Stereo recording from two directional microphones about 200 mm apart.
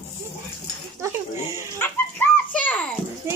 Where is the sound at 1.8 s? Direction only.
10° left (ahead or behind).